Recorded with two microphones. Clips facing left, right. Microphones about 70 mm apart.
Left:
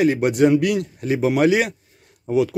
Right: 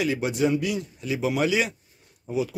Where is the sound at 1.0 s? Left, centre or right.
Left.